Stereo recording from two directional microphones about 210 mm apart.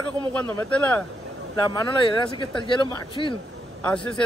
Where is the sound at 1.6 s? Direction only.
20° left (ahead or behind).